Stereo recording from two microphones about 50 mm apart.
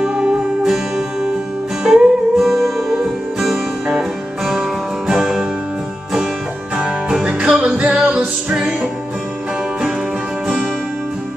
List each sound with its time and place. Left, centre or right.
0.0 s music: centre
1.8 s music: centre
5.1 s music: centre
7.2 s music: right
8.5 s music: centre